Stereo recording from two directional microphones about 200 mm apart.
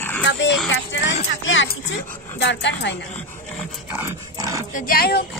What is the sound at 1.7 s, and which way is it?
Speech, 60° left (ahead or behind).